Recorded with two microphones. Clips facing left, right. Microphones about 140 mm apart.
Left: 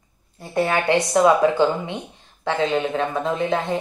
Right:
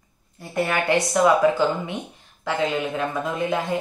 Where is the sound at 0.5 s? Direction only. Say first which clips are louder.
Left 2 dB; 25° left (ahead or behind).